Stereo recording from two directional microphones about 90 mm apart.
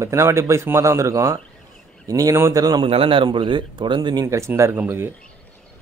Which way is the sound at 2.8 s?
85° right.